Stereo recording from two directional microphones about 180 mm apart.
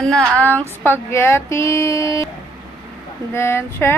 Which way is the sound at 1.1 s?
15° left (ahead or behind).